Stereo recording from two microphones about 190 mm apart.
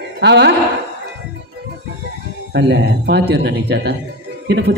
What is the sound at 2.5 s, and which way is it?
A woman's voice, 65° right (ahead or behind).